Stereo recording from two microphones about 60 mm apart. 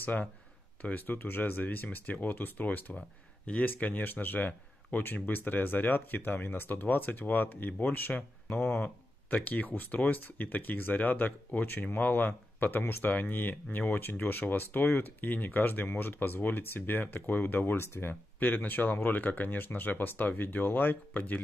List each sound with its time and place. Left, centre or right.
0.0 s speech: left
8.2 s speech: centre; by 18.1 s left
18.4 s speech: left